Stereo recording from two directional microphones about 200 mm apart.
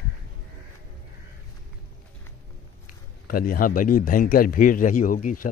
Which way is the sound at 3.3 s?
45° left (ahead or behind).